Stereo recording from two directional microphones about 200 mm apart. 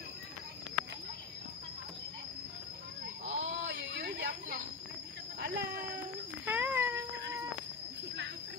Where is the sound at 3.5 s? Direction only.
60° right (ahead or behind).